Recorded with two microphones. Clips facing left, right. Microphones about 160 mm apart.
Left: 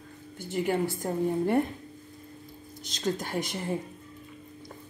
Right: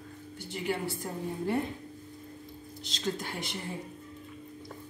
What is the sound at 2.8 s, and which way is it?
Speech, 45° left (ahead or behind).